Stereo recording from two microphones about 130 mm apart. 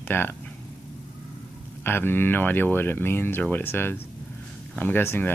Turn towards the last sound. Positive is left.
turn(degrees=15)  # may be behind; listen again after turning